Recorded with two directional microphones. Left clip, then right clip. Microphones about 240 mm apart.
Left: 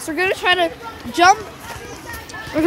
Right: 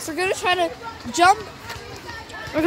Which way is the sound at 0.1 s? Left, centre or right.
Centre.